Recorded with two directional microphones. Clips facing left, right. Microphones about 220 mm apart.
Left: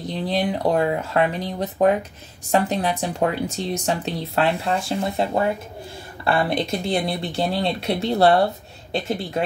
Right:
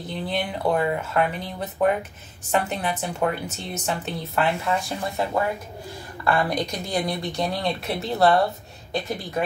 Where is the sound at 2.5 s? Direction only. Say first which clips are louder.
Left 4 dB; 35° left (ahead or behind).